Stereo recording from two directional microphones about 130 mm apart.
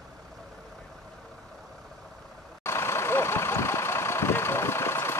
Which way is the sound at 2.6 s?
20° left (ahead or behind).